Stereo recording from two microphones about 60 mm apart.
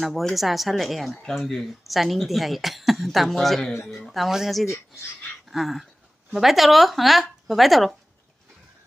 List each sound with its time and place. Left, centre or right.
0.0 s speech: centre
4.6 s speech: left
5.5 s speech: centre